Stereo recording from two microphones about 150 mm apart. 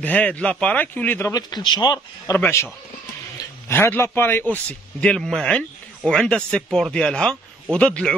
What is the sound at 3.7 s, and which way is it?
A man's voice, 15° left (ahead or behind).